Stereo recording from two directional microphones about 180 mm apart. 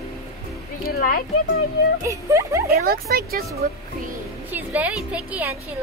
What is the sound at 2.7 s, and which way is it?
Speech, 60° right (ahead or behind).